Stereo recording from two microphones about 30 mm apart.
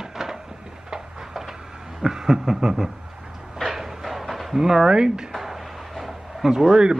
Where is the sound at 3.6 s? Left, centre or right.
Centre.